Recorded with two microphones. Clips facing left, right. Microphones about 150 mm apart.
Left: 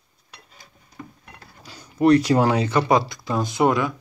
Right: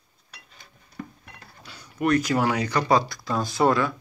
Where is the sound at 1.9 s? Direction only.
30° left (ahead or behind).